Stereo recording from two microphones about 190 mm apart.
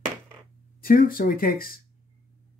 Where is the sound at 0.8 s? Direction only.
50° left (ahead or behind).